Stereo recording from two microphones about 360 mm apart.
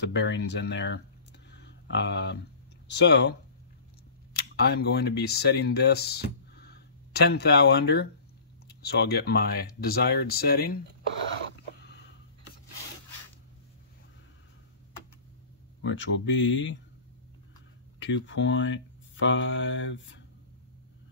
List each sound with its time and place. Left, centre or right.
0.0 s speech: left
1.6 s a sound: left
2.9 s speech: left
15.8 s speech: left
17.9 s speech: left